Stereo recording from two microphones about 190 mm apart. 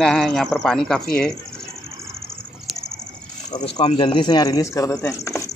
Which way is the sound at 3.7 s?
30° left (ahead or behind).